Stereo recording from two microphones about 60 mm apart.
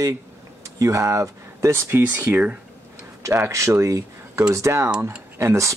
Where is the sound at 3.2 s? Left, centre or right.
Right.